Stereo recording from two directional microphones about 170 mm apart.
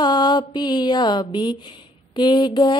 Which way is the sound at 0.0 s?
25° left (ahead or behind).